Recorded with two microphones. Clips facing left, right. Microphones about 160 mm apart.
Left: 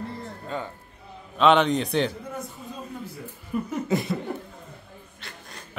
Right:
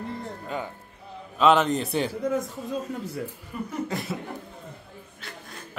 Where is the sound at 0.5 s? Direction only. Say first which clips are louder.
Even; 15° right (ahead or behind).